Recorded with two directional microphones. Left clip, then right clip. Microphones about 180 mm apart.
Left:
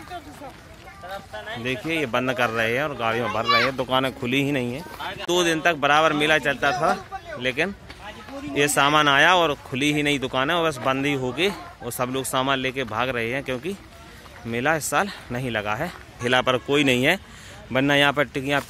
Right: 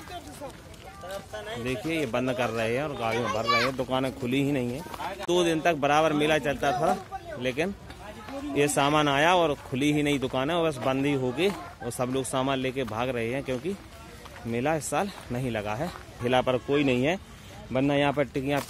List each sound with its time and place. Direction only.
1.1 s speech: 65° right (ahead or behind)
1.9 s speech: centre (ahead or behind)